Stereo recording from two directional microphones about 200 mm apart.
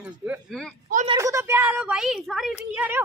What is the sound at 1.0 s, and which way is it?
Speech, 20° right (ahead or behind).